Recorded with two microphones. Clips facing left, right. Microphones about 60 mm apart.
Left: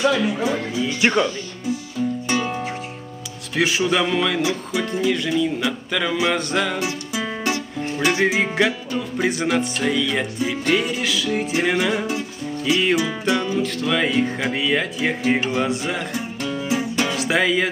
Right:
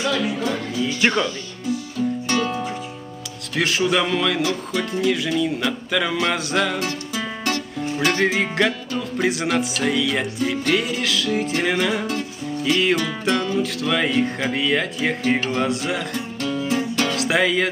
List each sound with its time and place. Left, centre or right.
0.0 s speech: centre
2.0 s music: centre
3.5 s music: centre
13.2 s speech: centre